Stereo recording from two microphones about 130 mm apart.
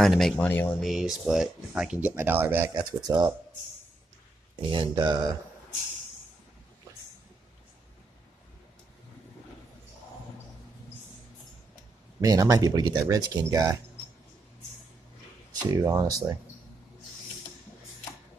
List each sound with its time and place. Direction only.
0.0 s speech: centre (ahead or behind)
0.5 s speech: 15° left (ahead or behind)
0.7 s speech: centre (ahead or behind); by 2.7 s 15° right (ahead or behind)
2.7 s speech: 30° right (ahead or behind)
4.6 s speech: 40° right (ahead or behind)
12.2 s speech: 25° right (ahead or behind)
15.7 s speech: 30° right (ahead or behind)